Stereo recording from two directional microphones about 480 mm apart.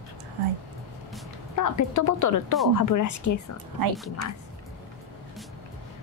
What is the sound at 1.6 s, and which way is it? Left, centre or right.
A woman's voice, left.